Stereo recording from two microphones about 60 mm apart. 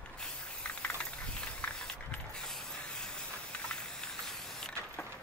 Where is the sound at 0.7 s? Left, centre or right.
Centre.